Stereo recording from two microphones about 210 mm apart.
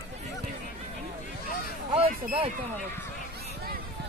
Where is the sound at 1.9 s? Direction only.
30° right (ahead or behind).